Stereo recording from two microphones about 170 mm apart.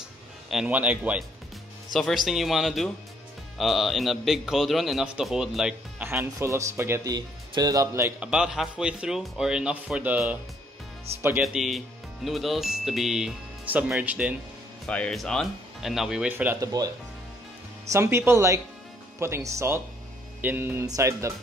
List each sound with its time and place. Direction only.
0.5 s a man's voice: 5° right (ahead or behind)
6.0 s speech: 15° right (ahead or behind)
8.3 s a man's voice: 5° right (ahead or behind)
11.4 s a man's voice: centre (ahead or behind)
14.9 s a man's voice: 5° left (ahead or behind); by 16.7 s 10° right (ahead or behind)
17.9 s speech: 15° right (ahead or behind)